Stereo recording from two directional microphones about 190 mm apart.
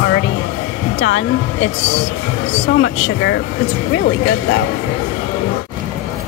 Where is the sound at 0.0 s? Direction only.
70° left (ahead or behind).